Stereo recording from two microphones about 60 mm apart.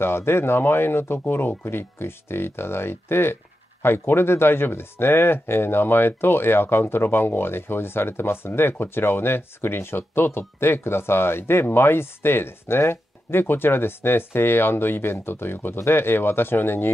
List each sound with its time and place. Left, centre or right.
0.0 s speech: left